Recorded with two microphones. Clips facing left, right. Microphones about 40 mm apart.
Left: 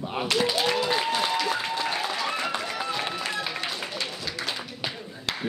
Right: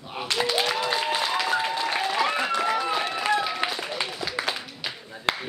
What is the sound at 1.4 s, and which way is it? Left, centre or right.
Applause, centre.